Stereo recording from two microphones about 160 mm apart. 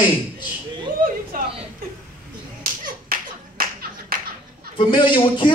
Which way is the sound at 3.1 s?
65° right (ahead or behind).